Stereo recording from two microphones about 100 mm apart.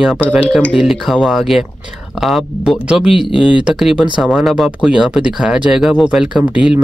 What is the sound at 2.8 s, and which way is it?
Speech, 5° right (ahead or behind).